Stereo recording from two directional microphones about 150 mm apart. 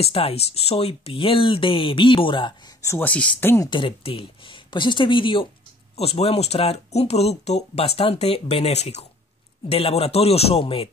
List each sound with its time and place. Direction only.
0.0 s speech: 40° left (ahead or behind)
2.9 s speech: 10° left (ahead or behind)
3.7 s speech: 35° left (ahead or behind)